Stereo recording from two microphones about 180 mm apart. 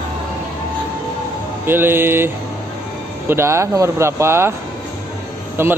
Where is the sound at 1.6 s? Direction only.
10° right (ahead or behind).